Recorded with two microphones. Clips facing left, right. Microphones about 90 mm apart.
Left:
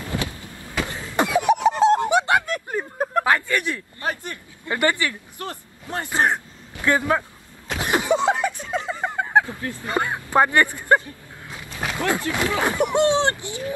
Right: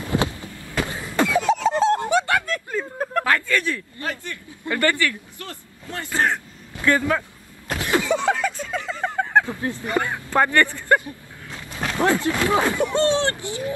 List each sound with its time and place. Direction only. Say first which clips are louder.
0.0 s a sound: right 5 dB; 20° right (ahead or behind)
0.5 s a sound: right 1 dB; 20° left (ahead or behind)
0.7 s cough: right 1 dB; 20° right (ahead or behind)
1.1 s laughter: left 1 dB; 20° left (ahead or behind)
1.8 s a sound: left 2 dB; 20° left (ahead or behind)
9.5 s speech: right 4 dB; 20° right (ahead or behind)
9.8 s speech: left 1 dB; 20° left (ahead or behind)
11.4 s wild animals: right 1 dB; 10° left (ahead or behind)
12.3 s speech: right 2 dB; 25° right (ahead or behind)
12.6 s speech: left 1 dB; 20° left (ahead or behind)